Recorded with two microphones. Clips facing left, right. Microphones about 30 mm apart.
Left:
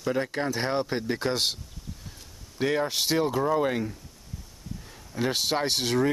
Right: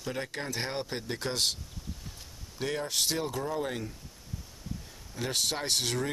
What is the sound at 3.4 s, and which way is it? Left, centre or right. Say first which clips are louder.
Speech: left 8 dB; left.